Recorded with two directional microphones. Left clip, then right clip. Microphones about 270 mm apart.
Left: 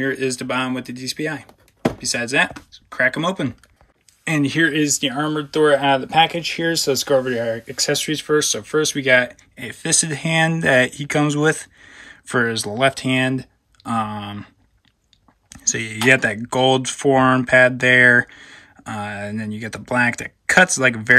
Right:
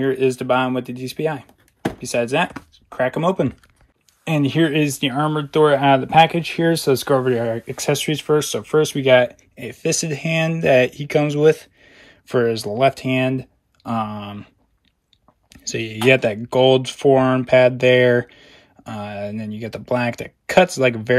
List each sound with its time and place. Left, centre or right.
0.0 s speech: centre
15.5 s speech: centre